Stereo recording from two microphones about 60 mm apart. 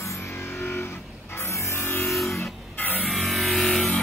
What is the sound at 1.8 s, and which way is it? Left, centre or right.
Music, left.